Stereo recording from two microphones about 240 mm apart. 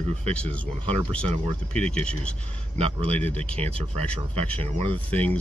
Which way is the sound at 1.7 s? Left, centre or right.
Centre.